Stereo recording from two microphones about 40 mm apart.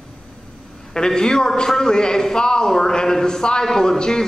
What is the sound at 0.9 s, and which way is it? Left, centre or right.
A man's voice, centre.